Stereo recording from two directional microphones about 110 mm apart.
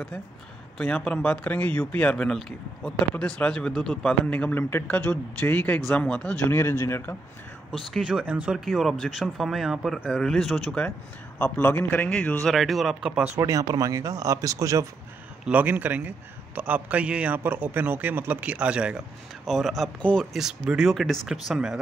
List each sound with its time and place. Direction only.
0.7 s a man's voice: 10° left (ahead or behind)
6.5 s speech: 25° left (ahead or behind)
7.9 s speech: centre (ahead or behind)
8.3 s a man's voice: 15° right (ahead or behind)
8.5 s speech: centre (ahead or behind)
11.3 s a man's voice: 20° left (ahead or behind)
12.4 s speech: centre (ahead or behind)
13.4 s speech: 30° right (ahead or behind)
15.4 s a man's voice: 15° right (ahead or behind); by 20.2 s 10° left (ahead or behind)
20.3 s speech: 5° right (ahead or behind)